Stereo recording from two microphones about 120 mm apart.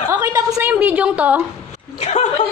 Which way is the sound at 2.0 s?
70° left (ahead or behind).